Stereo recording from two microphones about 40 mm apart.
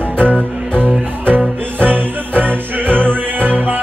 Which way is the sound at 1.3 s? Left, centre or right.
Right.